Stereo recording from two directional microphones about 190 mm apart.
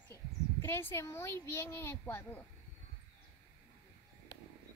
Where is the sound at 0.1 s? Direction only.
15° left (ahead or behind).